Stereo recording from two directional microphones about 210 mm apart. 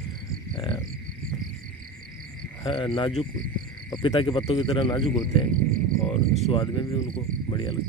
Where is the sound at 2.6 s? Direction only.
25° left (ahead or behind).